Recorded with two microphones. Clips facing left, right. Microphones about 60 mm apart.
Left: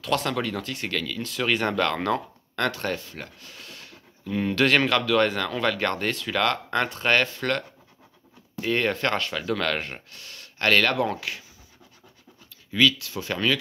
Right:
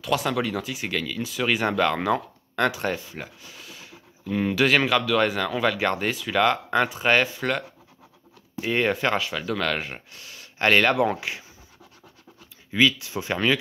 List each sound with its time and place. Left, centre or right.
0.0 s speech: centre; by 11.4 s right
12.7 s speech: right